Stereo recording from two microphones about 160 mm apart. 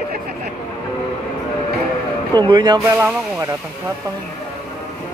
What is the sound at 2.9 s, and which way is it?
Speech, 15° right (ahead or behind).